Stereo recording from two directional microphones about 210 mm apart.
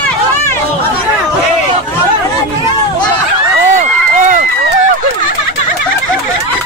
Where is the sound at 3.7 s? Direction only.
35° right (ahead or behind).